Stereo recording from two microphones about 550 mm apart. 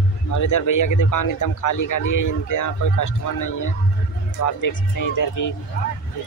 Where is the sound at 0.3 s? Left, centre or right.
Left.